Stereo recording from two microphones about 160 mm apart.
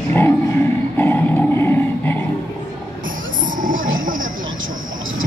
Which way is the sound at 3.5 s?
55° right (ahead or behind).